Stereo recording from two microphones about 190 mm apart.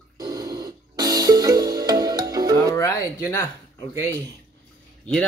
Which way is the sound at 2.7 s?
15° left (ahead or behind).